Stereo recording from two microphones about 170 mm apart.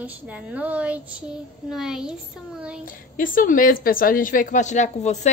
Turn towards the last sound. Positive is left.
turn(degrees=45)  # may be behind; listen again after turning